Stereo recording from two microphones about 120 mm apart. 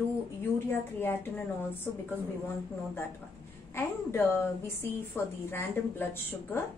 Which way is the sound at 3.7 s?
20° left (ahead or behind).